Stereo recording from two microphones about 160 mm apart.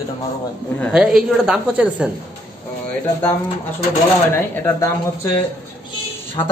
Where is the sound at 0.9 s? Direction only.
5° right (ahead or behind).